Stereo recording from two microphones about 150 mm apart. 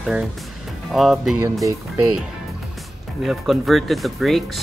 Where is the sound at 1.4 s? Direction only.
20° right (ahead or behind).